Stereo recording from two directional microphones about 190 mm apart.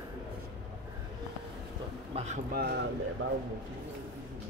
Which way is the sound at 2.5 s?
60° right (ahead or behind).